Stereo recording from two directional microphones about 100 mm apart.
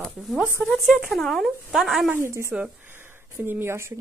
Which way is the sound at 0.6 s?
Centre (ahead or behind).